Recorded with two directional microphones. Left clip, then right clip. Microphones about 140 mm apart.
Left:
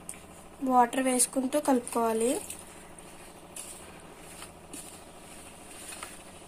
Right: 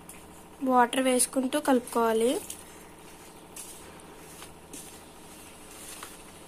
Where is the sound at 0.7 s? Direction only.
5° left (ahead or behind).